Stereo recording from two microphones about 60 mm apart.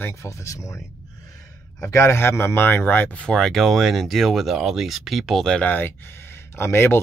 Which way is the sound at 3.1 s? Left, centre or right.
Centre.